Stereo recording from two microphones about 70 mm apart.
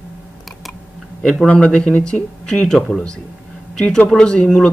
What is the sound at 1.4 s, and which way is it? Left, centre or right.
Speech, centre.